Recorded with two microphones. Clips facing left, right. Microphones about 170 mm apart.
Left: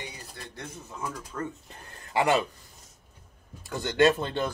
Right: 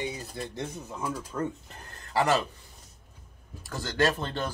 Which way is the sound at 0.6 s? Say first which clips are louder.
Even; 10° right (ahead or behind).